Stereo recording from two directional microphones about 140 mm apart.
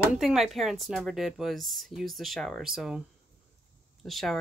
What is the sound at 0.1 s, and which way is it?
Speech, 5° right (ahead or behind).